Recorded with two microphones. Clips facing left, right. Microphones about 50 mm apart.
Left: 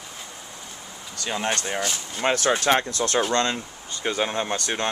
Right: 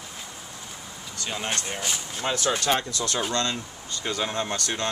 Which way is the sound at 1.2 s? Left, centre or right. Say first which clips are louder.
Left 4 dB; left.